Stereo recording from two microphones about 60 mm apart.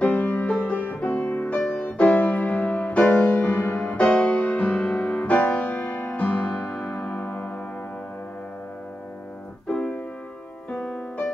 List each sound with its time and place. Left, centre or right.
0.0 s music: left
1.6 s music: centre
1.9 s music: left
9.7 s music: left